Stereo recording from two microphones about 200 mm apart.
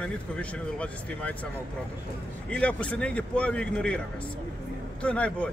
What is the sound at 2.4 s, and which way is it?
Speech, 5° left (ahead or behind).